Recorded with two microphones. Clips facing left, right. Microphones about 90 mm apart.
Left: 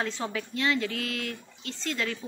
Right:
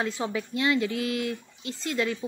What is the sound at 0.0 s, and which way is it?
A woman's voice, 15° right (ahead or behind).